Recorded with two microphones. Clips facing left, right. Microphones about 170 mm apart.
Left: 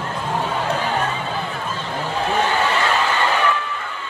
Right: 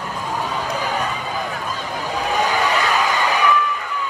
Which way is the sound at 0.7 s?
40° right (ahead or behind).